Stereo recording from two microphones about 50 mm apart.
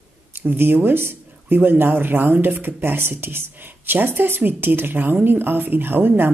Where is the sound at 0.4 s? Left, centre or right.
Right.